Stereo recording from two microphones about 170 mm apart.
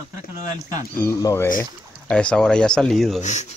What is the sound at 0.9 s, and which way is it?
Speech, 15° left (ahead or behind).